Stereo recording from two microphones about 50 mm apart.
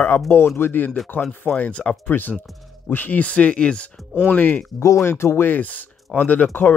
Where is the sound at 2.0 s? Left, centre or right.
Left.